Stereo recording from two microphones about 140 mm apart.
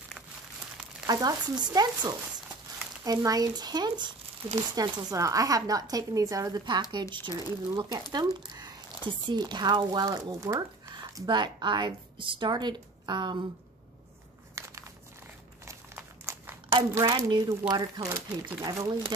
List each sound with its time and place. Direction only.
1.0 s a woman's voice: 30° right (ahead or behind)
14.6 s crumpling: 20° right (ahead or behind)
15.6 s a woman's voice: 20° right (ahead or behind)